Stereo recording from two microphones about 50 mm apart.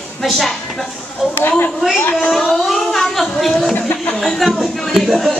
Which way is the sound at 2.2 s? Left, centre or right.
Centre.